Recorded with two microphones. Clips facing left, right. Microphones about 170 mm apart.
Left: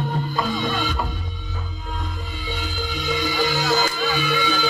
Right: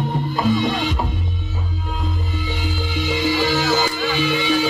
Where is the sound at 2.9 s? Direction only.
25° right (ahead or behind).